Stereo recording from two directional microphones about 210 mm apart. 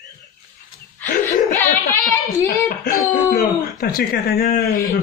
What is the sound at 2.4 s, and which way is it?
Speech, 45° left (ahead or behind).